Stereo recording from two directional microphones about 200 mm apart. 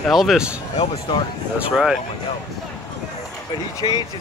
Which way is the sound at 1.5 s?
5° right (ahead or behind).